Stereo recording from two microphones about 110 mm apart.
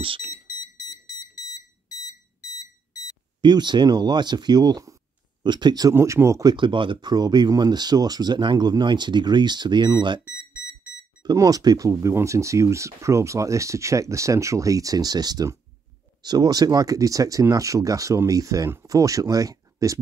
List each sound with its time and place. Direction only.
3.3 s speech: 40° right (ahead or behind)
5.9 s speech: 25° right (ahead or behind)
6.5 s speech: 50° right (ahead or behind)
11.2 s speech: 35° right (ahead or behind)